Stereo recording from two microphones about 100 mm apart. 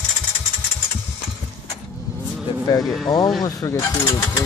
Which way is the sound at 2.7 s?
40° left (ahead or behind).